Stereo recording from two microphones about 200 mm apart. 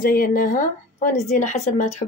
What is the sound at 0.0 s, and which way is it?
A woman's voice, 45° left (ahead or behind).